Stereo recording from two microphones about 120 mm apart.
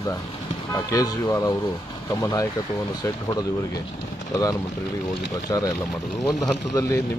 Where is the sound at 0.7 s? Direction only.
30° left (ahead or behind).